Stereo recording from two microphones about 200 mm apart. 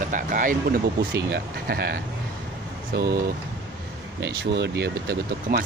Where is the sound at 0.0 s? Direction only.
40° right (ahead or behind).